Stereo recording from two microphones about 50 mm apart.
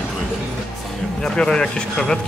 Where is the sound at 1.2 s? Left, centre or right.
Centre.